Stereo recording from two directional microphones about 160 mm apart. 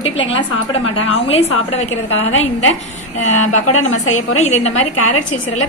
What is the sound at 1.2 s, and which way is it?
Speech, 40° left (ahead or behind).